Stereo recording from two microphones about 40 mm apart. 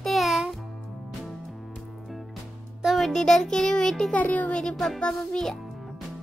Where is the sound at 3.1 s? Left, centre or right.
Centre.